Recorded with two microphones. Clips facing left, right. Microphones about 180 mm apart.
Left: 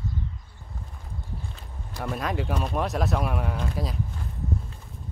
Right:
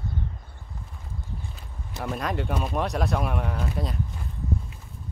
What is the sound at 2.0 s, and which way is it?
Speech, centre (ahead or behind).